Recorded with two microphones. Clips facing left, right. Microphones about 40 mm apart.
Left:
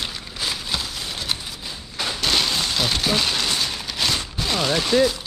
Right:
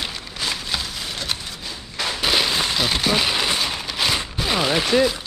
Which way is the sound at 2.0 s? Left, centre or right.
Centre.